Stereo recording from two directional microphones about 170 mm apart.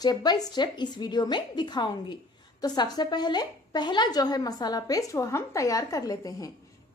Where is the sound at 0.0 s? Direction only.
25° left (ahead or behind).